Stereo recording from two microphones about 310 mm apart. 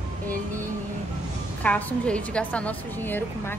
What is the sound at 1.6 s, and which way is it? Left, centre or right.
A woman's voice, centre.